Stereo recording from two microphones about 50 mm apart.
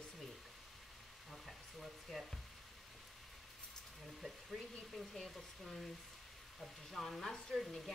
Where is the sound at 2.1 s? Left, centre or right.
Centre.